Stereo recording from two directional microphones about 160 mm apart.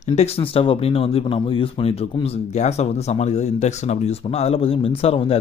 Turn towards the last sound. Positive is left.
turn(degrees=35)  # may be behind; listen again after turning